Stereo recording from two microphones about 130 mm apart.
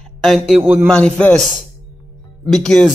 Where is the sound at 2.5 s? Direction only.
5° left (ahead or behind).